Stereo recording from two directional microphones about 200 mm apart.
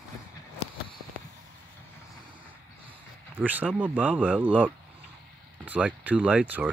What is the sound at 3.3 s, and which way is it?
Speech, 10° right (ahead or behind).